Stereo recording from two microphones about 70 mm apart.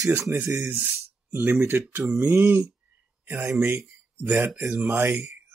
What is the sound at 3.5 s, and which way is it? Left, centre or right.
Speech, right.